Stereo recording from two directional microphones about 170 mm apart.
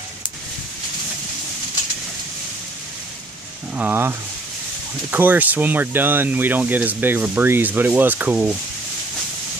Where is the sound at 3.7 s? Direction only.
10° right (ahead or behind).